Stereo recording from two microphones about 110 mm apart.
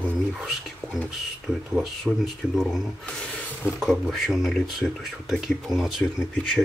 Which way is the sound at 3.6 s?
20° left (ahead or behind).